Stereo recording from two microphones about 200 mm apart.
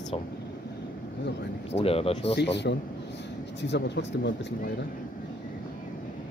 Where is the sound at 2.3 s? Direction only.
60° left (ahead or behind).